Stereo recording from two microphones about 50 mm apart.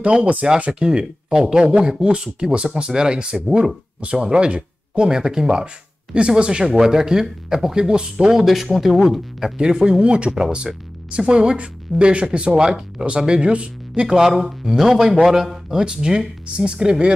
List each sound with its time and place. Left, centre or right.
0.0 s speech: right; by 9.5 s centre
9.6 s speech: centre
14.0 s speech: centre